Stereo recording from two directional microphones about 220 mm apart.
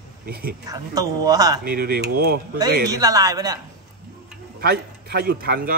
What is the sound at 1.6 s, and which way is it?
Speech, 45° right (ahead or behind).